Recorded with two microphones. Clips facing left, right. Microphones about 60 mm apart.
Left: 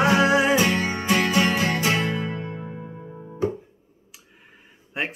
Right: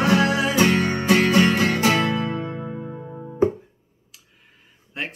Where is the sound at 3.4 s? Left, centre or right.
Right.